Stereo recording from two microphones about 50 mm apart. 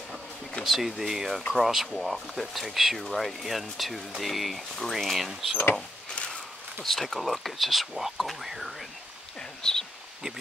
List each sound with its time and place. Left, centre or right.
0.7 s speech: centre
6.0 s a sound: left
6.8 s speech: centre
9.6 s speech: centre